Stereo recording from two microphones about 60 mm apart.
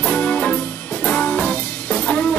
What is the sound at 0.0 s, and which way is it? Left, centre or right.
Music, left.